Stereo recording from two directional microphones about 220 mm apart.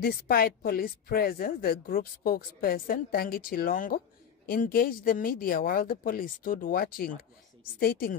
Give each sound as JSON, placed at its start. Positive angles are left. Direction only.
{"t": 0.0, "sound": "a woman's voice", "side_deg": 40}